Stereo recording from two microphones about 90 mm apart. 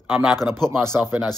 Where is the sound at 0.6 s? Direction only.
25° right (ahead or behind).